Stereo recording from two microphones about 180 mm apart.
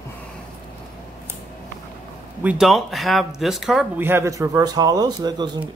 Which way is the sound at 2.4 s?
5° right (ahead or behind).